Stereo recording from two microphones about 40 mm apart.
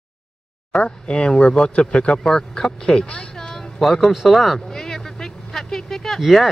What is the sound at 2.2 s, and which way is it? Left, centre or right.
Speech, centre.